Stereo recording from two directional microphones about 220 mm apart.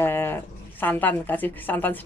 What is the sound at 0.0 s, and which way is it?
Speech, 10° left (ahead or behind).